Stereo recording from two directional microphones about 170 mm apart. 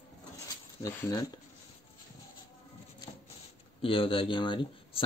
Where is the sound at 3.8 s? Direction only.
30° left (ahead or behind).